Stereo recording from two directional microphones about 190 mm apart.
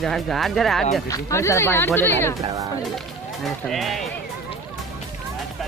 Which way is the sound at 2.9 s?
Centre (ahead or behind).